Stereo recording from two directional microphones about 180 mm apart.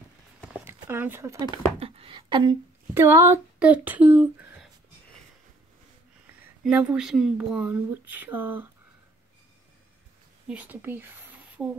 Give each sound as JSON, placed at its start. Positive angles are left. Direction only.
{"t": 0.8, "sound": "speech", "side_deg": -10}
{"t": 1.5, "sound": "speech", "side_deg": -30}
{"t": 2.9, "sound": "speech", "side_deg": -15}
{"t": 6.6, "sound": "speech", "side_deg": -5}
{"t": 10.5, "sound": "speech", "side_deg": -10}